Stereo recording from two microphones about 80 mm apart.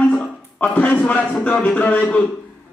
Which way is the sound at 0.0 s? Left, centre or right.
Centre.